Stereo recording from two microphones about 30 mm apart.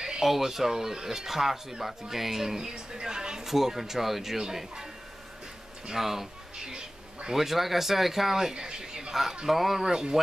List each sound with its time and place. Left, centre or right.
0.2 s speech: centre
3.4 s speech: centre
5.9 s speech: centre
6.6 s cat: right
7.3 s speech: centre
8.5 s a sound: right
9.5 s speech: centre
9.8 s speech: right